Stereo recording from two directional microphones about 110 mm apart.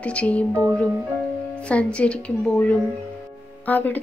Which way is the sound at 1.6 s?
10° left (ahead or behind).